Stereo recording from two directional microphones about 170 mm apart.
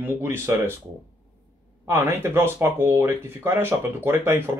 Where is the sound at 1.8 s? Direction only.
15° right (ahead or behind).